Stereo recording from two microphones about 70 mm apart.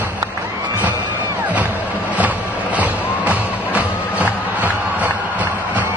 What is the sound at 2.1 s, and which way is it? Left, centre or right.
Music, right.